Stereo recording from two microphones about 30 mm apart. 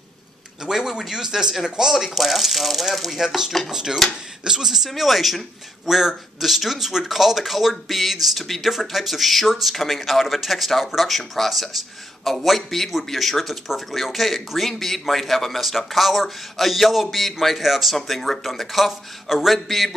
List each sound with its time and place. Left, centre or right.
0.7 s speech: centre
2.0 s a man's voice: centre
3.7 s a man's voice: centre
17.9 s a man's voice: centre